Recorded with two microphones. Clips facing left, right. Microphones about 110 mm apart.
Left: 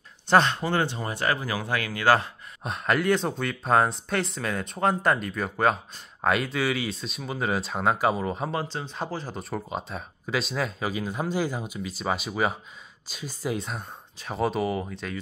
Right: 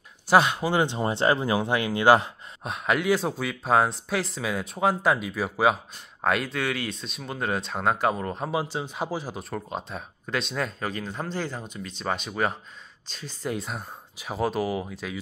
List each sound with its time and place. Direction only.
0.3 s speech: 10° right (ahead or behind)
2.6 s speech: centre (ahead or behind)
8.5 s speech: 10° right (ahead or behind)